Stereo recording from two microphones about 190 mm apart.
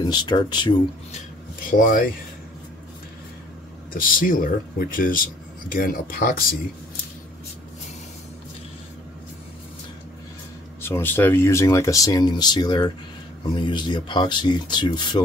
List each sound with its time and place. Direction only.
0.0 s speech: 20° left (ahead or behind)
1.7 s speech: 45° left (ahead or behind)
3.9 s speech: 50° left (ahead or behind)
10.8 s speech: 10° left (ahead or behind)